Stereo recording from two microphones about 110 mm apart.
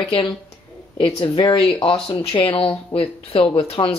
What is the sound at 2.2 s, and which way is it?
Speech, 60° left (ahead or behind).